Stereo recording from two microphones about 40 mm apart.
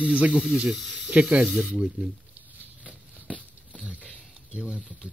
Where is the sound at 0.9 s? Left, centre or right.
Right.